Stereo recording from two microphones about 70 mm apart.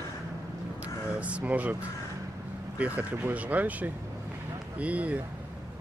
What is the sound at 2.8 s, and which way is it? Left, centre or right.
Speech, right.